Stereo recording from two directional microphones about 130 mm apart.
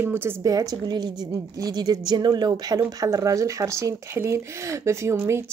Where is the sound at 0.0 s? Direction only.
15° right (ahead or behind).